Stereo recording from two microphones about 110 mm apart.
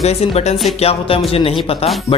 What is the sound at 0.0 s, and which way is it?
Speech, 70° left (ahead or behind).